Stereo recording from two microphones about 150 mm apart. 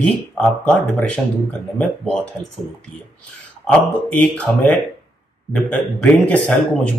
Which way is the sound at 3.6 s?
5° left (ahead or behind).